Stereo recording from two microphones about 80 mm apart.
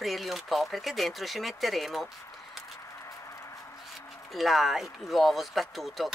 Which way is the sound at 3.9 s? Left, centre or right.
Centre.